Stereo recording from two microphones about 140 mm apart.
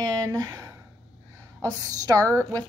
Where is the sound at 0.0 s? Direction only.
25° right (ahead or behind).